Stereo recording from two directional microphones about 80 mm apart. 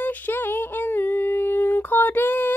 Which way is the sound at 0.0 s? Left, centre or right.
Left.